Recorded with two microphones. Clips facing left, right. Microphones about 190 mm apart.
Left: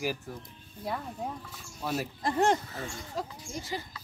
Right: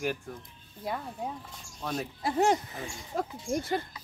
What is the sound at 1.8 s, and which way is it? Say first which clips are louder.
Speech: left 1 dB; 5° left (ahead or behind).